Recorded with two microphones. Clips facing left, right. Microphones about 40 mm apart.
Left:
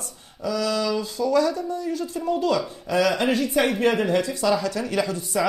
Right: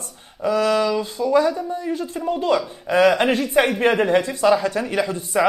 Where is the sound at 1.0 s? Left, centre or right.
Right.